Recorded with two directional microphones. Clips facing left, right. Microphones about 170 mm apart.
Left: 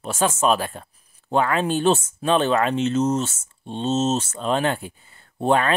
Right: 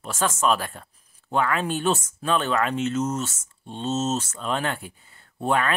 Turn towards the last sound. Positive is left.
turn(degrees=30)  # may be behind; listen again after turning